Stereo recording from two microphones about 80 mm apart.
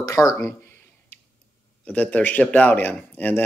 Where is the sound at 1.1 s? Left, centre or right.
Left.